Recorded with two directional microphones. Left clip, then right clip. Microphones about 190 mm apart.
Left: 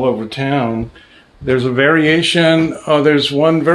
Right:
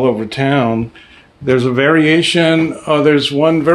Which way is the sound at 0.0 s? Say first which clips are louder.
Right 2 dB; 45° right (ahead or behind).